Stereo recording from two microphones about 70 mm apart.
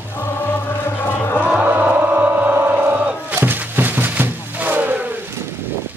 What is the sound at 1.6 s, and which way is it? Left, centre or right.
Music, right.